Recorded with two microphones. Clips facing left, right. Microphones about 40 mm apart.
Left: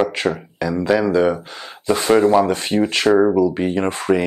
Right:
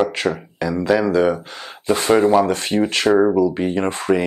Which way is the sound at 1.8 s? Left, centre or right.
Centre.